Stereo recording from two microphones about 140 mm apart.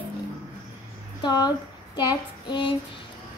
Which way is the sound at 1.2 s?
30° left (ahead or behind).